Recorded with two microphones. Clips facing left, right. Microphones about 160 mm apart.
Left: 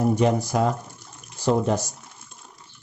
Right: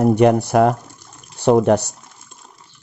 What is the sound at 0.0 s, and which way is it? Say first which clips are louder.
Speech: right 7 dB; 65° right (ahead or behind).